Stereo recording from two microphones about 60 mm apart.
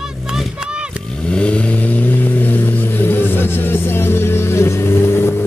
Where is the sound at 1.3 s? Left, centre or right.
Centre.